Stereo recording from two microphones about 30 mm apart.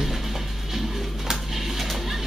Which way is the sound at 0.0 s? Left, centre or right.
Centre.